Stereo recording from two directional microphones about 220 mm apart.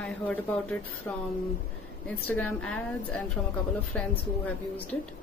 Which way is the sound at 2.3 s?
5° left (ahead or behind).